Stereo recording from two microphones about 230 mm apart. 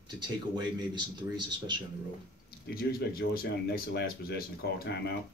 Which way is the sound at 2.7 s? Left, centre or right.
Left.